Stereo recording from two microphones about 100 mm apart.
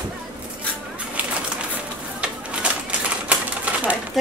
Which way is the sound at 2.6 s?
10° right (ahead or behind).